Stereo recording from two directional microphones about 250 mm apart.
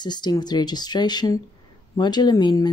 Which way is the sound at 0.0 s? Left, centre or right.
Centre.